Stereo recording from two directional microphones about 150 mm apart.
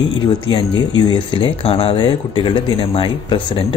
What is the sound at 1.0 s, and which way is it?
Speech, 35° left (ahead or behind).